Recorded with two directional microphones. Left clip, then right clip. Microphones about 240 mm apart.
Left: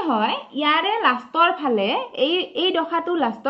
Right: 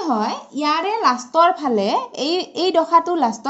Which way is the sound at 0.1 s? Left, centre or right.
Right.